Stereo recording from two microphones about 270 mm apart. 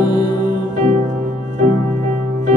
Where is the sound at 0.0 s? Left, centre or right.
Centre.